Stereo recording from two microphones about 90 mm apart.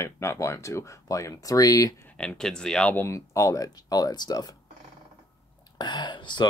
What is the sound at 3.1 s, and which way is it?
Speech, 35° left (ahead or behind).